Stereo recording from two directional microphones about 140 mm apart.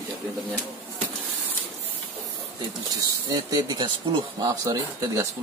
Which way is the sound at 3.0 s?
30° right (ahead or behind).